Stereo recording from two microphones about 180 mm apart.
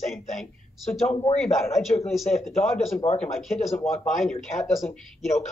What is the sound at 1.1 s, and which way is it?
Speech, 35° left (ahead or behind).